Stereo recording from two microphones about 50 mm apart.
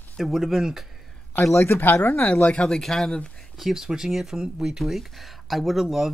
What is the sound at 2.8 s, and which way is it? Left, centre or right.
Speech, centre.